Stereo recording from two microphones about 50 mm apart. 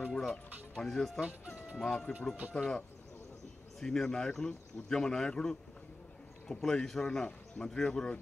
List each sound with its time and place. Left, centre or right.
0.1 s a sound: centre
0.8 s speech: centre
3.8 s speech: centre